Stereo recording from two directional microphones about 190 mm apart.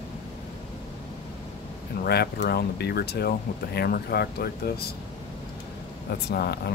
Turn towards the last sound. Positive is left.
turn(degrees=55)  # may be behind; listen again after turning